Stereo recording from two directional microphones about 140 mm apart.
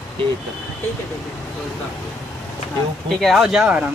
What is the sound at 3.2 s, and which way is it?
Speech, centre (ahead or behind).